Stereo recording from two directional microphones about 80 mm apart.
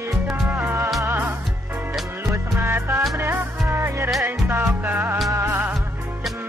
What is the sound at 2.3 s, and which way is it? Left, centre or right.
Music, right.